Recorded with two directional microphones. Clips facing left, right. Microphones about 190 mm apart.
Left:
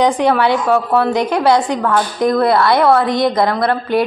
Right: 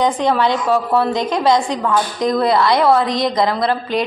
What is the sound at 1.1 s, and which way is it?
Speech, 65° left (ahead or behind).